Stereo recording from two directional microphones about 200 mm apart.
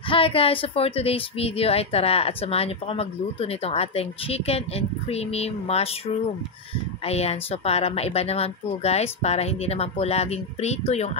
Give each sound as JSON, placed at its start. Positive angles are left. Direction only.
{"t": 0.1, "sound": "a woman's voice", "side_deg": 30}